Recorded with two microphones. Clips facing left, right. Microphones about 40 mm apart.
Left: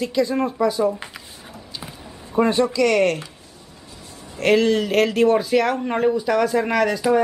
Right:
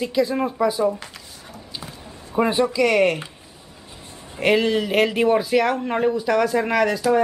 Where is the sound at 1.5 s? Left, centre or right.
Centre.